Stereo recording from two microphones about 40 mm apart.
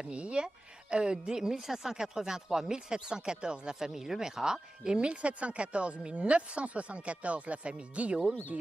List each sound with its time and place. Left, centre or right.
0.1 s a woman's voice: right